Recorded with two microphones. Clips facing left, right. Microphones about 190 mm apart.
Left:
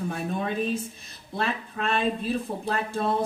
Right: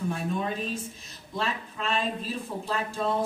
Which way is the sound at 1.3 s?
55° left (ahead or behind).